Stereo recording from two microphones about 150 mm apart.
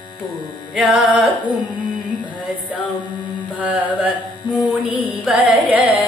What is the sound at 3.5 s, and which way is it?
Music, 10° right (ahead or behind).